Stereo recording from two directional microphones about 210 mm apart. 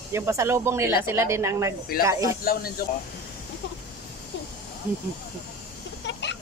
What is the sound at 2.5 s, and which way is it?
Speech, 45° left (ahead or behind).